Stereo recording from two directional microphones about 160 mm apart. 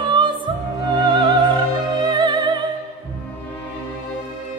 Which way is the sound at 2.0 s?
25° right (ahead or behind).